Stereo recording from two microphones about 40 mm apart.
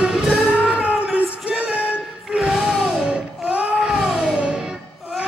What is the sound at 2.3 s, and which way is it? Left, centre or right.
Music, centre.